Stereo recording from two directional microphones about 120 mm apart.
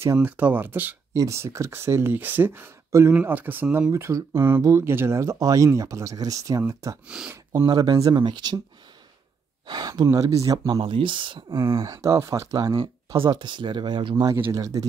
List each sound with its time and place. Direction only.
0.0 s speech: 15° right (ahead or behind)
3.9 s speech: 25° right (ahead or behind)
7.1 s speech: 5° right (ahead or behind)
7.5 s speech: 30° right (ahead or behind)
9.7 s speech: 35° right (ahead or behind)
10.8 s speech: 45° right (ahead or behind)
11.6 s speech: 30° right (ahead or behind)
14.3 s speech: 30° right (ahead or behind)